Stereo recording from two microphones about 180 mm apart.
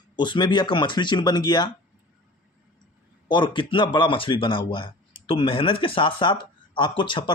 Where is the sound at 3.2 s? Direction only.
25° left (ahead or behind).